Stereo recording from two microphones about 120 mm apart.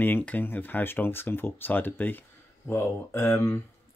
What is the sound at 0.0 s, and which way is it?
Speech, 15° left (ahead or behind).